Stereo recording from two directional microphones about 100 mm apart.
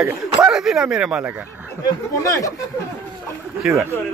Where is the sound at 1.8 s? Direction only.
35° left (ahead or behind).